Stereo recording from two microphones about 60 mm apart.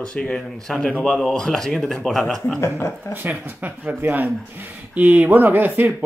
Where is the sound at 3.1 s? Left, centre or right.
Right.